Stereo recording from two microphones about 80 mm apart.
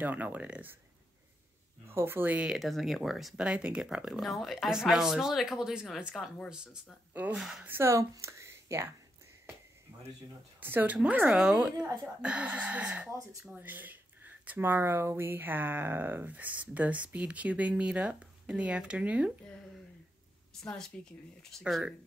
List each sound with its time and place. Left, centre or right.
0.0 s speech: centre
1.9 s speech: right
2.6 s speech: centre
3.3 s speech: centre
7.6 s speech: right
7.9 s speech: right
10.6 s speech: right
11.3 s speech: centre
13.1 s speech: right
13.6 s speech: right
20.6 s speech: centre